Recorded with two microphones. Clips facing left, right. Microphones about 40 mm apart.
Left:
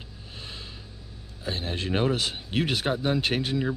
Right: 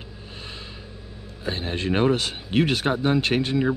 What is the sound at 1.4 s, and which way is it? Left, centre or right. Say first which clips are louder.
A man's voice: right 4 dB; centre.